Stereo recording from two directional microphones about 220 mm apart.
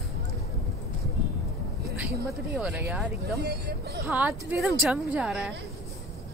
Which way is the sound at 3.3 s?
45° right (ahead or behind).